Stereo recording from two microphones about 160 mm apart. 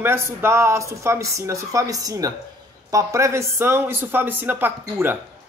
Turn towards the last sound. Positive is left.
turn(degrees=-15)  # may be behind; listen again after turning